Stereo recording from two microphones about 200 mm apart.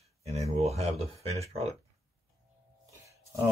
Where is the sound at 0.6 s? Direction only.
30° right (ahead or behind).